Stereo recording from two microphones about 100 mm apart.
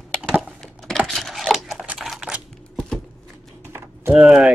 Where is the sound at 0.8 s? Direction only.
Centre (ahead or behind).